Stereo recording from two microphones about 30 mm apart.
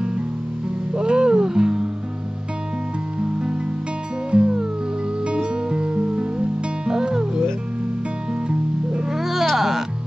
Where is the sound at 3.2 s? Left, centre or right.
Right.